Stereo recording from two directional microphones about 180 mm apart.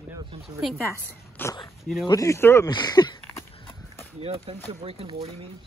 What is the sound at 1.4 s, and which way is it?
A man's voice, 20° left (ahead or behind).